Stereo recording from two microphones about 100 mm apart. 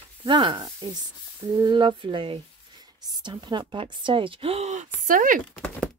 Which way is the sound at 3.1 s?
45° right (ahead or behind).